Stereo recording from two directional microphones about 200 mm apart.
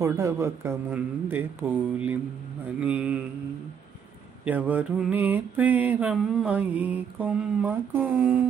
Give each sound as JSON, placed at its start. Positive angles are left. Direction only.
{"t": 0.0, "sound": "mantra", "side_deg": -15}
{"t": 4.5, "sound": "mantra", "side_deg": -10}